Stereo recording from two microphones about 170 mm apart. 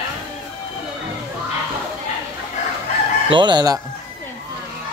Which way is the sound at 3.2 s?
30° right (ahead or behind).